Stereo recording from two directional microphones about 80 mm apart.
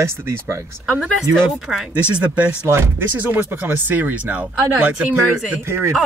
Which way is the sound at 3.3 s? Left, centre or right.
Right.